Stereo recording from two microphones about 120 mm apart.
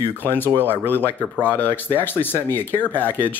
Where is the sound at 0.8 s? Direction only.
15° left (ahead or behind).